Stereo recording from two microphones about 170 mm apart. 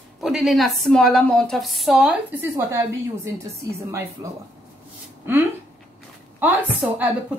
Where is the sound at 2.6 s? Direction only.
15° right (ahead or behind).